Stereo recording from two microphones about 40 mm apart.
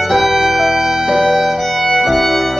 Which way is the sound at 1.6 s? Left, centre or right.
Centre.